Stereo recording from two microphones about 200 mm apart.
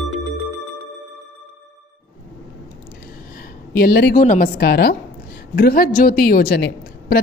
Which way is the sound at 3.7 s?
50° left (ahead or behind).